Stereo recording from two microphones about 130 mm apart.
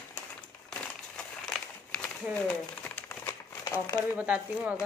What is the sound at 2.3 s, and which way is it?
Crumpling, 15° left (ahead or behind).